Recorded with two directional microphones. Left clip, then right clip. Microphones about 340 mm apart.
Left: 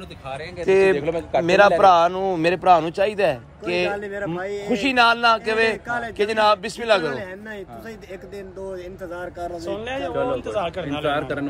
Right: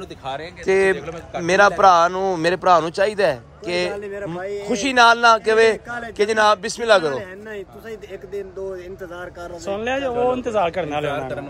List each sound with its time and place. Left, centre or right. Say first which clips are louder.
0.7 s a man's voice: left 1 dB; centre
9.7 s a man's voice: right 7 dB; right
11.1 s a man's voice: left 2 dB; centre